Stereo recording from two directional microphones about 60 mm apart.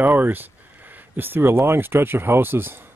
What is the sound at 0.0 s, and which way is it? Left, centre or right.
Speech, right.